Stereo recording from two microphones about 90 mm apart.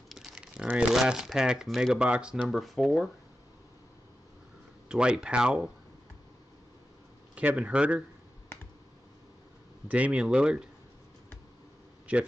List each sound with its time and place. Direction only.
0.1 s a sound: 5° right (ahead or behind)
0.9 s speech: 5° right (ahead or behind)
2.4 s speech: centre (ahead or behind)
4.8 s speech: 10° right (ahead or behind)
7.3 s speech: 15° right (ahead or behind)
9.8 s speech: 15° right (ahead or behind)